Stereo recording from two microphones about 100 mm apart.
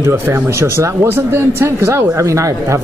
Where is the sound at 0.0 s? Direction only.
25° right (ahead or behind).